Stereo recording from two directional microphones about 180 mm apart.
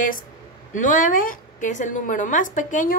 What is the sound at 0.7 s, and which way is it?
A woman's voice, 45° left (ahead or behind).